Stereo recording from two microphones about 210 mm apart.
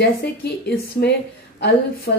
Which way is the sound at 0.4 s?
50° left (ahead or behind).